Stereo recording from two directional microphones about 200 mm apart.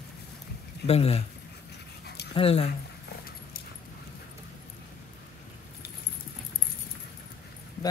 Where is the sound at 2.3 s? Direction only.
30° left (ahead or behind).